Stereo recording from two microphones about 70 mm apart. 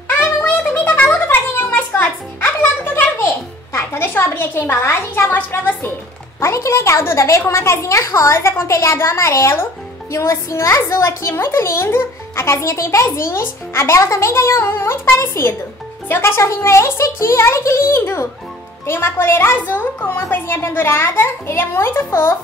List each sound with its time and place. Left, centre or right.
0.5 s a sound: left
1.2 s music: left
3.7 s a woman's voice: left
6.4 s a child's voice: left